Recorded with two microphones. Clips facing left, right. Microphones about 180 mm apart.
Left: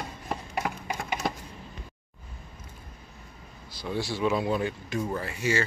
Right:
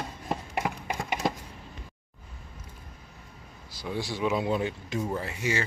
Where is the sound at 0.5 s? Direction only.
15° right (ahead or behind).